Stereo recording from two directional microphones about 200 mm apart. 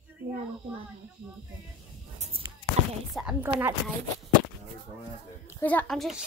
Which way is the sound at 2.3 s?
30° right (ahead or behind).